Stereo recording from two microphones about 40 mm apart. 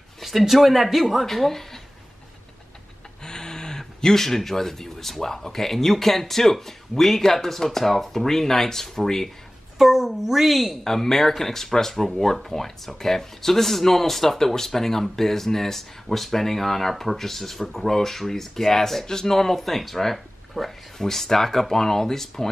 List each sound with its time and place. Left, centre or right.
0.2 s speech: centre
3.3 s speech: centre
9.8 s a woman's voice: centre
10.8 s speech: centre